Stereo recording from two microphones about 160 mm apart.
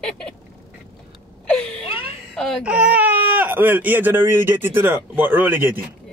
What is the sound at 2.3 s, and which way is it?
Speech, 5° left (ahead or behind).